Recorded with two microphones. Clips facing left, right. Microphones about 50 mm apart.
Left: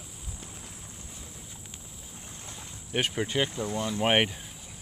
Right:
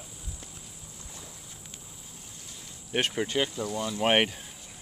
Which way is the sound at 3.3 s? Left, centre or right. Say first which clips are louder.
Even; centre.